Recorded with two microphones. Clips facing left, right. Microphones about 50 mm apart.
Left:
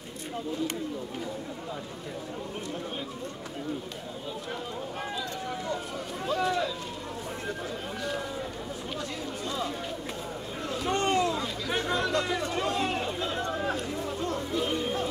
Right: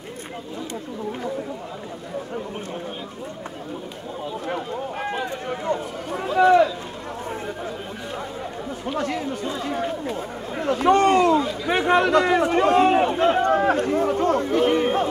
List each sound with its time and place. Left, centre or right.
5.0 s run: right
6.3 s a sound: right
8.9 s chatter: right
9.4 s run: right
9.7 s chatter: right
10.6 s a sound: right
11.7 s run: right